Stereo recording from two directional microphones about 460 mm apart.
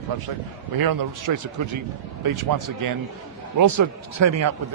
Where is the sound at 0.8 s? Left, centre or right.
Right.